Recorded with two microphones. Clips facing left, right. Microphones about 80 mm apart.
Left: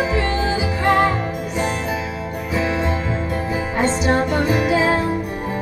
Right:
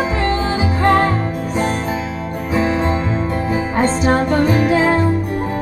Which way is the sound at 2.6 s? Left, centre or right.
Right.